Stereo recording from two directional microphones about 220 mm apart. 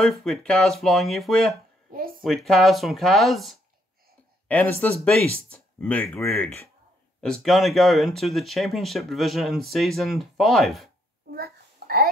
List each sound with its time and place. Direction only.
0.0 s speech: centre (ahead or behind)
1.9 s a sound: 40° right (ahead or behind)
2.2 s speech: centre (ahead or behind)
11.3 s babbling: 45° right (ahead or behind)